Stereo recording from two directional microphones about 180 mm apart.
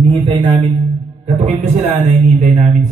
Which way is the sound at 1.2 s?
35° right (ahead or behind).